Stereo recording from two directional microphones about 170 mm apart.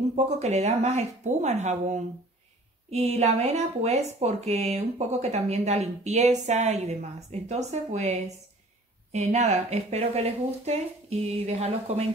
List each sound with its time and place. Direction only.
0.1 s speech: 40° right (ahead or behind)